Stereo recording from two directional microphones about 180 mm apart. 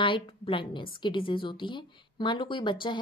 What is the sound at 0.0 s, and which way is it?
A woman's voice, 30° left (ahead or behind).